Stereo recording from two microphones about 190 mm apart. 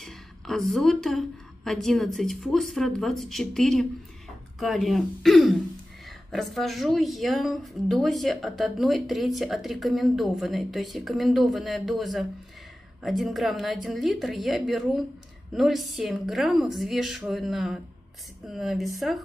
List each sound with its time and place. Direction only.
0.0 s speech: centre (ahead or behind)